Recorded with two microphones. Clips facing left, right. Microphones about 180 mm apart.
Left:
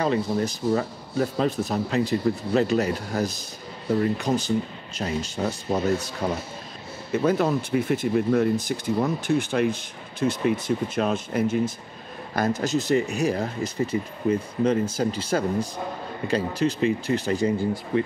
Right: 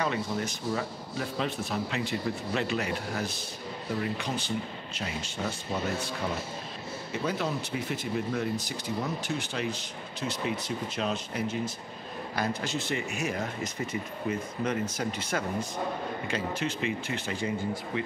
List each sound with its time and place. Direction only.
0.0 s speech: 35° left (ahead or behind)
7.2 s speech: 50° left (ahead or behind)